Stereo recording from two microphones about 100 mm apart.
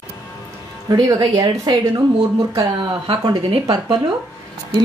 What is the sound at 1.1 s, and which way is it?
Speech, 40° right (ahead or behind).